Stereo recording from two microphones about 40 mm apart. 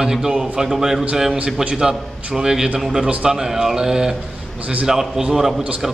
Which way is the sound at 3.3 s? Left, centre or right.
Centre.